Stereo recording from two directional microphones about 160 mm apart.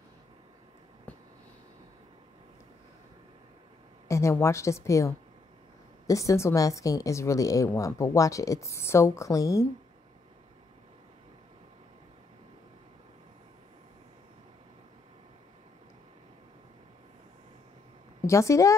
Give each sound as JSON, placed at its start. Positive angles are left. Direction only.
{"t": 4.1, "sound": "a woman's voice", "side_deg": 15}
{"t": 18.2, "sound": "a woman's voice", "side_deg": 20}